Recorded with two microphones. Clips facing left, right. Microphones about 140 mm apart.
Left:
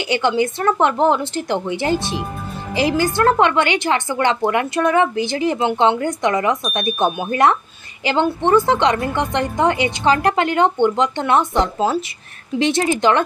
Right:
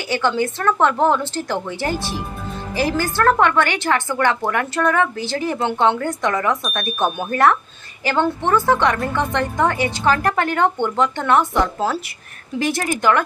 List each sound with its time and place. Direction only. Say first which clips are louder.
0.0 s a woman's voice: left 2 dB; 20° left (ahead or behind)